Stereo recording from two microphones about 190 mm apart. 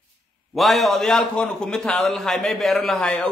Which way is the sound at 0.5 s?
Centre (ahead or behind).